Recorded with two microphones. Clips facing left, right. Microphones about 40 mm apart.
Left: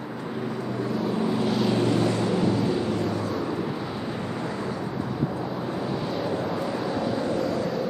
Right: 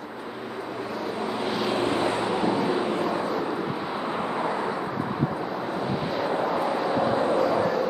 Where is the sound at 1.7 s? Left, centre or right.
Right.